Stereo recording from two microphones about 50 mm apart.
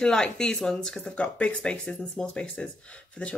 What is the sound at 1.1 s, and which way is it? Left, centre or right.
A woman's voice, left.